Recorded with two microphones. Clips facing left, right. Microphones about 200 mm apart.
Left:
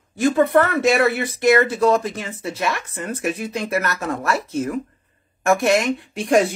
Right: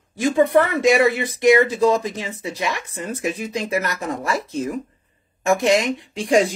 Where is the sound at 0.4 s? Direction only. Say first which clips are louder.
Right 2 dB; 15° right (ahead or behind).